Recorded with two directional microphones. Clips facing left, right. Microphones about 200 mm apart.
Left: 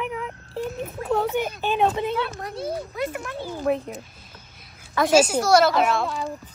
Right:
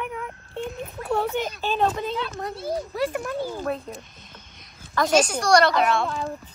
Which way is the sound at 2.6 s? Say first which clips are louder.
Right 2 dB; 35° right (ahead or behind).